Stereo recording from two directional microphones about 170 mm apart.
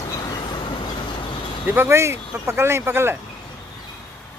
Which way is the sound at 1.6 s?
15° right (ahead or behind).